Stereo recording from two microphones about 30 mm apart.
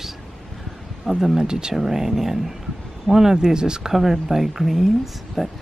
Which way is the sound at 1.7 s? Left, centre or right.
Centre.